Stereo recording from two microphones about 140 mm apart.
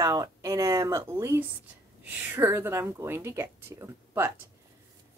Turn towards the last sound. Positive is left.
turn(degrees=-20)  # may be behind; listen again after turning